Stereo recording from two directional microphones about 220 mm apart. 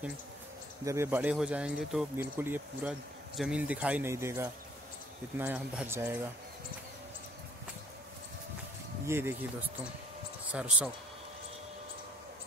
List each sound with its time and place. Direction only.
0.8 s speech: 10° right (ahead or behind)
9.0 s speech: 10° right (ahead or behind)